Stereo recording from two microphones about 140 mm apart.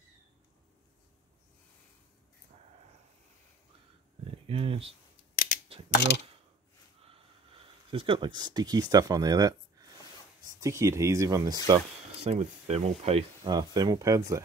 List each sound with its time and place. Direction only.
4.5 s speech: 40° right (ahead or behind)
5.3 s scissors: 75° left (ahead or behind)
5.7 s speech: 45° right (ahead or behind)
7.9 s speech: 40° right (ahead or behind)
12.3 s speech: 50° right (ahead or behind)
13.4 s speech: 30° right (ahead or behind)